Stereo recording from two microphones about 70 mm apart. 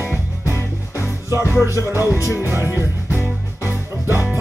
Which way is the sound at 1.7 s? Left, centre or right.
Left.